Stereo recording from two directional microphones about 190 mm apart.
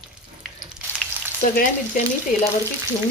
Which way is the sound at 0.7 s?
10° right (ahead or behind).